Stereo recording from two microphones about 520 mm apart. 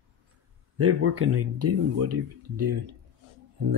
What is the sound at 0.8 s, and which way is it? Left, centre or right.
Speech, right.